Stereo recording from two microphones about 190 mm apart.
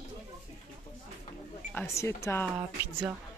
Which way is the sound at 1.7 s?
10° left (ahead or behind).